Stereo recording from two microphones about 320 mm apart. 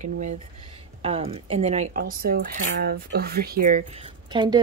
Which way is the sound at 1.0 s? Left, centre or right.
Centre.